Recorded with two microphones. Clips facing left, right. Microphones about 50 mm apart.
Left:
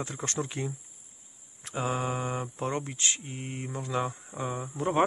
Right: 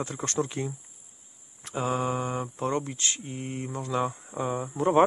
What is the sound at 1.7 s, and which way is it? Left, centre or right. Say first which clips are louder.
Speech: right 3 dB; centre.